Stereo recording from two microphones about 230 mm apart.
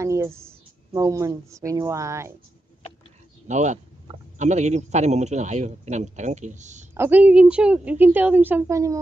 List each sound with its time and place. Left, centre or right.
0.0 s speech: centre
3.4 s a man's voice: right
6.9 s a woman's voice: centre